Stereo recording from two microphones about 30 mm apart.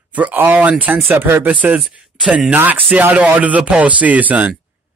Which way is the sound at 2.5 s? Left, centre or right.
Right.